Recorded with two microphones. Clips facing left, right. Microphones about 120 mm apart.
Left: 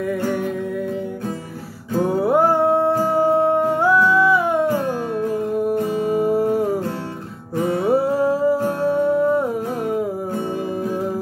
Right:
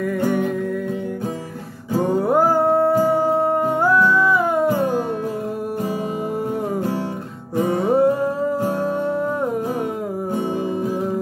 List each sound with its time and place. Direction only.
2.1 s music: centre (ahead or behind)
6.2 s music: centre (ahead or behind)
7.5 s music: 20° right (ahead or behind)
7.8 s music: 5° left (ahead or behind)